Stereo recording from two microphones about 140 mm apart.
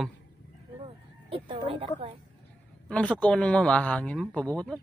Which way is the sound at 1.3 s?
40° right (ahead or behind).